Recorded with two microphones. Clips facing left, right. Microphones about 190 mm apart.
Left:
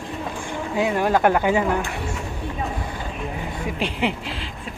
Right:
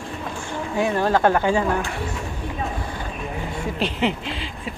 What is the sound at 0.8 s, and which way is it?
Speech, 15° left (ahead or behind).